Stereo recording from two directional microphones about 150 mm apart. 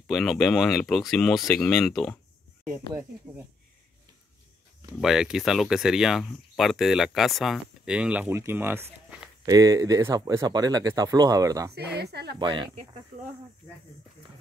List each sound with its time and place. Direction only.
0.0 s speech: centre (ahead or behind)
2.9 s speech: 15° right (ahead or behind)
5.0 s speech: 5° right (ahead or behind); by 11.7 s 20° right (ahead or behind)
11.7 s a woman's voice: 90° right
12.4 s speech: 30° right (ahead or behind)